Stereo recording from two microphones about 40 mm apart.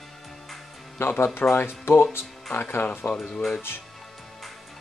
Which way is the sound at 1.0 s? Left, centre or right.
Left.